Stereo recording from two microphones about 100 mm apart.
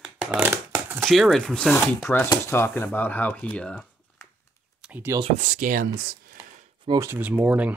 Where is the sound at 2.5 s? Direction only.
25° left (ahead or behind); by 3.9 s 10° left (ahead or behind).